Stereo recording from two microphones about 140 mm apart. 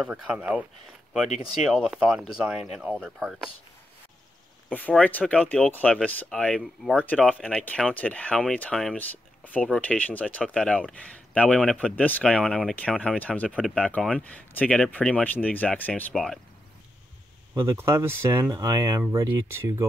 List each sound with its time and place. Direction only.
0.4 s speech: 10° right (ahead or behind)
4.7 s speech: 10° left (ahead or behind)
17.6 s speech: 20° right (ahead or behind)